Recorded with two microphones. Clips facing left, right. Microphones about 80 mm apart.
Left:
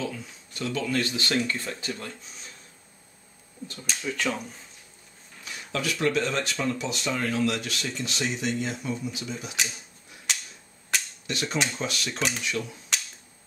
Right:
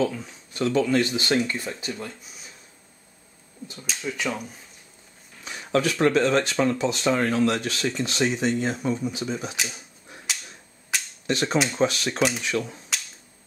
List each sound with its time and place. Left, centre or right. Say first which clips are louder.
0.6 s speech: right 7 dB; right; by 2.5 s centre
3.6 s speech: right 1 dB; centre
5.7 s speech: right 6 dB; right
10.3 s cap gun: left 1 dB; centre
11.2 s speech: right 6 dB; right
12.2 s speech: right 7 dB; centre
12.4 s speech: right 4 dB; right